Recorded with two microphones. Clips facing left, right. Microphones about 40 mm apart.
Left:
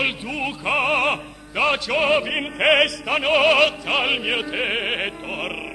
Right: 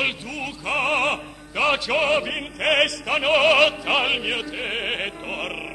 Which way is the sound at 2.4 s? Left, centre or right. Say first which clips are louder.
Left 4 dB; left.